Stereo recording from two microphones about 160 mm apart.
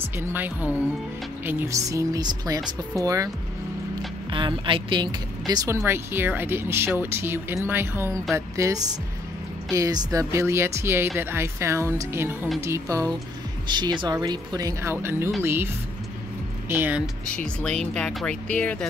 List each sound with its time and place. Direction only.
0.2 s speech: 10° right (ahead or behind)
4.3 s speech: 30° right (ahead or behind)
5.7 s speech: 15° right (ahead or behind)
17.3 s speech: 5° left (ahead or behind)